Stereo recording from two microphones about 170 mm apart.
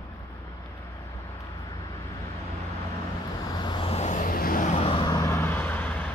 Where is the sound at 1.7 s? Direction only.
20° left (ahead or behind).